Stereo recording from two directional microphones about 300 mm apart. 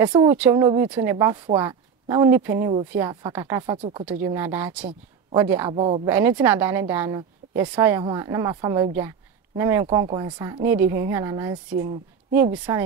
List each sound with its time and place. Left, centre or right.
0.0 s speech: centre
4.0 s speech: centre
6.0 s speech: centre